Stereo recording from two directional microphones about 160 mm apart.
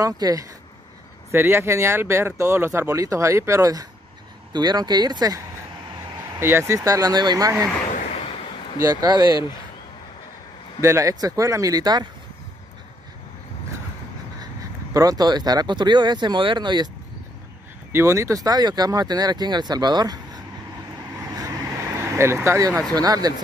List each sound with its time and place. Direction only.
0.0 s speech: 20° right (ahead or behind)
6.4 s speech: 15° right (ahead or behind)
8.7 s speech: 20° right (ahead or behind)
10.8 s speech: 20° right (ahead or behind)
15.0 s speech: 25° right (ahead or behind)
17.9 s speech: 20° right (ahead or behind)
21.9 s speech: 15° right (ahead or behind)